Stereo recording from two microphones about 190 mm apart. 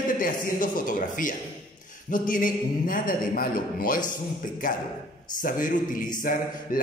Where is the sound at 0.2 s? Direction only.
45° left (ahead or behind).